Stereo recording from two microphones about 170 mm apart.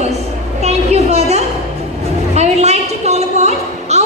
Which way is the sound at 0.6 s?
40° right (ahead or behind).